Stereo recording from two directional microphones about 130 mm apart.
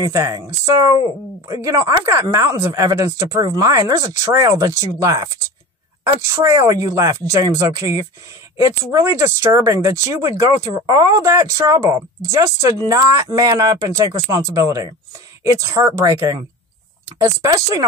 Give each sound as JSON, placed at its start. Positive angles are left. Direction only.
{"t": 0.0, "sound": "speech", "side_deg": -25}